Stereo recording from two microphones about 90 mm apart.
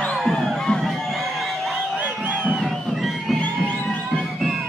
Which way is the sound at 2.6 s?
Centre (ahead or behind).